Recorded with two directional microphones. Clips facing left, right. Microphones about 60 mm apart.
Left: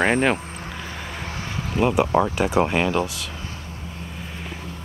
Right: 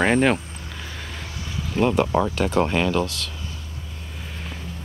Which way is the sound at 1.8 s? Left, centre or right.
Centre.